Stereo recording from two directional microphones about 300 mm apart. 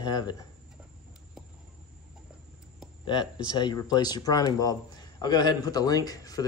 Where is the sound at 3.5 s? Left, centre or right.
Centre.